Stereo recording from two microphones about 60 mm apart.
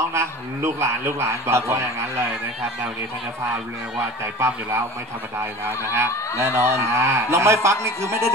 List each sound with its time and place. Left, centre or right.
0.1 s speech: right
5.9 s speech: right